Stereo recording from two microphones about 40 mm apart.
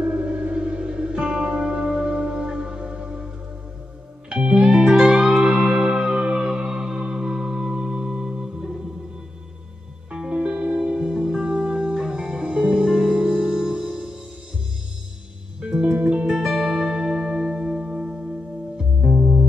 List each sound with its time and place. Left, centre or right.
0.0 s music: right
4.3 s music: centre
10.1 s music: centre
15.6 s music: right
16.3 s music: centre
18.9 s music: right